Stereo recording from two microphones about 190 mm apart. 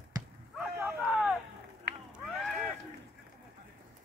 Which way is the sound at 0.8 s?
5° right (ahead or behind).